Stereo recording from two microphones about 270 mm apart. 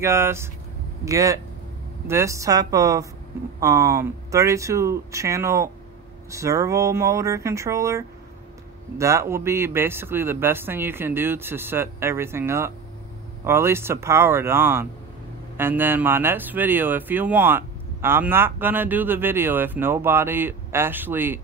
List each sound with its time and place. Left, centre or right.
0.0 s speech: centre